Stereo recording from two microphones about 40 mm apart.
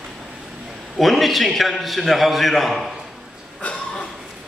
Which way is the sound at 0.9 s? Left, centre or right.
Centre.